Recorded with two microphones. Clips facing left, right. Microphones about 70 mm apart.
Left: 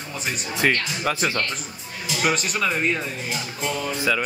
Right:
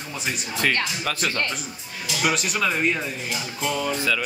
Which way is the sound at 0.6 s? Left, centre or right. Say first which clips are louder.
Left 2 dB; centre.